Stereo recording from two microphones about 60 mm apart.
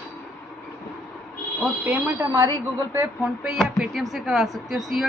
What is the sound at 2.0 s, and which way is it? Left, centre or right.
Speech, right.